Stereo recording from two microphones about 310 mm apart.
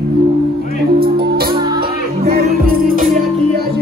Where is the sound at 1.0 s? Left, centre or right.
Right.